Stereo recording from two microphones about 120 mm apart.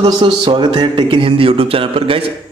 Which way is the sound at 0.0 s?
45° right (ahead or behind).